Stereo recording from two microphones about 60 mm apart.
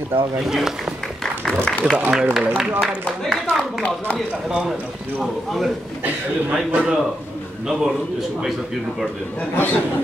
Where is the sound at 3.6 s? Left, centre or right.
Centre.